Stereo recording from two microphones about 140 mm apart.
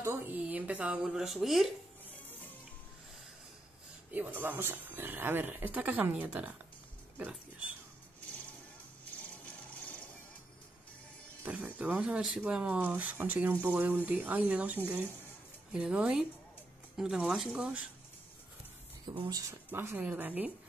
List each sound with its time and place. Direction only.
0.0 s speech: 15° right (ahead or behind); by 1.7 s centre (ahead or behind)
4.1 s speech: 10° right (ahead or behind)
11.4 s speech: 10° right (ahead or behind)
19.1 s speech: 30° right (ahead or behind)
19.7 s speech: 15° right (ahead or behind)